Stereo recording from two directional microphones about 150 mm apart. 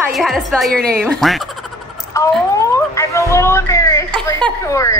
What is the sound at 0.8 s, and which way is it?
Speech, 90° right.